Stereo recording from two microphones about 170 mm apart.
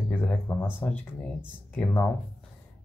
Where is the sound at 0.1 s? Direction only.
10° left (ahead or behind).